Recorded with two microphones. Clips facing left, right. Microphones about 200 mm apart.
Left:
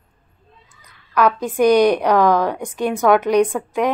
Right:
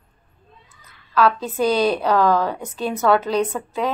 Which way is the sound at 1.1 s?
15° left (ahead or behind).